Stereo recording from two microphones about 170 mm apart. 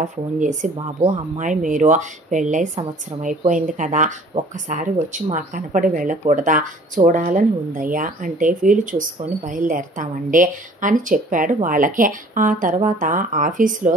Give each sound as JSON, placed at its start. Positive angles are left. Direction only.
{"t": 0.0, "sound": "speech", "side_deg": -45}
{"t": 4.3, "sound": "speech", "side_deg": -25}
{"t": 4.6, "sound": "speech", "side_deg": -45}